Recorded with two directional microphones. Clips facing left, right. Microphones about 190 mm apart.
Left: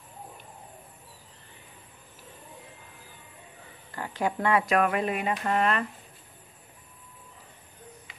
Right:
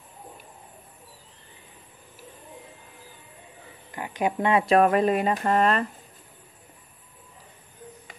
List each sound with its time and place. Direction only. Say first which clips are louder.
3.9 s speech: right 3 dB; 15° right (ahead or behind); by 5.9 s 40° right (ahead or behind)